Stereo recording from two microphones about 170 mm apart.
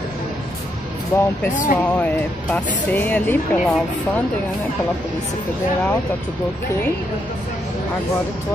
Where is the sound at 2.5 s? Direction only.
10° left (ahead or behind).